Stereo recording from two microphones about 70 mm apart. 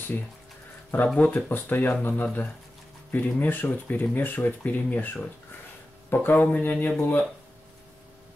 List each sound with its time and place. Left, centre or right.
0.9 s speech: centre
1.5 s speech: left
3.1 s speech: left